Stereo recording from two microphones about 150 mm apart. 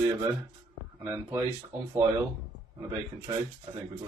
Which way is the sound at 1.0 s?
15° right (ahead or behind).